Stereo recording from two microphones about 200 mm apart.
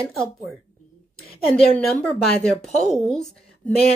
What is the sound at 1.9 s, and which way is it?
A woman's voice, 5° left (ahead or behind).